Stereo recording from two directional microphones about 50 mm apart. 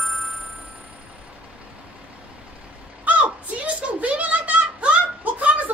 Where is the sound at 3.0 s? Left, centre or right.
Right.